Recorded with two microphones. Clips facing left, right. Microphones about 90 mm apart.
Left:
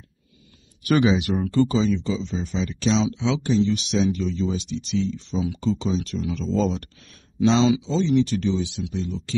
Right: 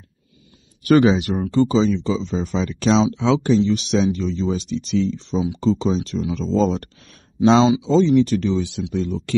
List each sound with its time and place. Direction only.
0.8 s speech: 40° right (ahead or behind)
1.4 s speech: 20° right (ahead or behind)
1.8 s speech: 35° right (ahead or behind)